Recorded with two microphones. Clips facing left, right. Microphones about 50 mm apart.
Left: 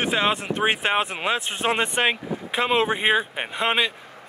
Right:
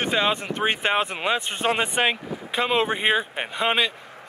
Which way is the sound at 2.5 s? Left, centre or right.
Centre.